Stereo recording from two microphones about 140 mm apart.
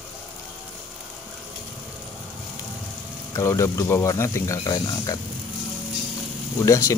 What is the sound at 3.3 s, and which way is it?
Speech, 20° left (ahead or behind).